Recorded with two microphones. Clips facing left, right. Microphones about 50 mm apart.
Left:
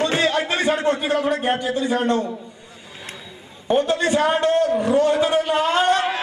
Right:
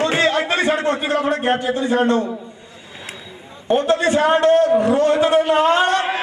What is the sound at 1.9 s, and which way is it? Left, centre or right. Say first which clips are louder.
Speech: right 4 dB; centre.